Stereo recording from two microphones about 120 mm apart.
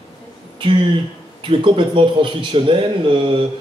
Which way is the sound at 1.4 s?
45° right (ahead or behind).